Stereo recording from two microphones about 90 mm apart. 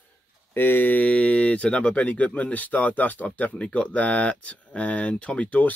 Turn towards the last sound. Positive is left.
turn(degrees=15)  # may be behind; listen again after turning